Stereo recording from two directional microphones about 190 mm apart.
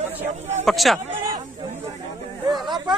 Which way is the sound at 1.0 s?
25° right (ahead or behind).